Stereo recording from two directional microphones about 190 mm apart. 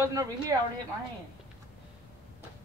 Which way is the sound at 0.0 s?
15° right (ahead or behind).